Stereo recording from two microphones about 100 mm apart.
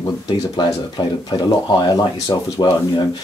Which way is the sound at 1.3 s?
45° left (ahead or behind).